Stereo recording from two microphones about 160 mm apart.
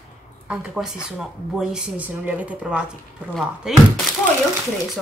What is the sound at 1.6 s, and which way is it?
Speech, 5° right (ahead or behind).